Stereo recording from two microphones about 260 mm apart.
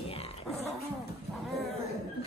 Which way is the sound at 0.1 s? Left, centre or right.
Left.